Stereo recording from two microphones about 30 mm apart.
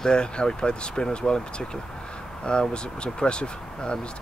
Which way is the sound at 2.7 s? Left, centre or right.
Left.